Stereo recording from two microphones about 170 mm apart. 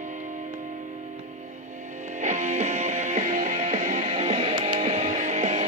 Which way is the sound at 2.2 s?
45° right (ahead or behind).